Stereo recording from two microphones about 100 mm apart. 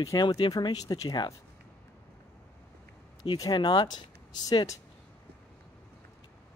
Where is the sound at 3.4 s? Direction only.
45° left (ahead or behind).